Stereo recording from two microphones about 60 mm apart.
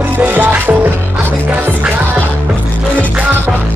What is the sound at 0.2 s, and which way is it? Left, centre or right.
Music, right.